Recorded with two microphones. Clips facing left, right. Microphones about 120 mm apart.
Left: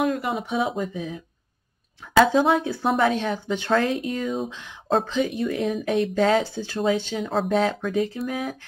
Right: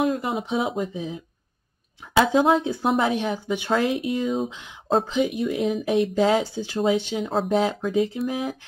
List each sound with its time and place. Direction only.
0.0 s speech: 25° right (ahead or behind)
2.5 s speech: 20° right (ahead or behind)
7.2 s speech: 5° right (ahead or behind)
7.9 s speech: 20° right (ahead or behind)